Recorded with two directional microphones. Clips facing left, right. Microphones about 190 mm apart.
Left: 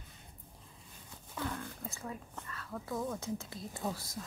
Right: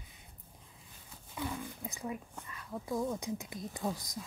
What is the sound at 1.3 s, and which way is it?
Speech, 10° right (ahead or behind).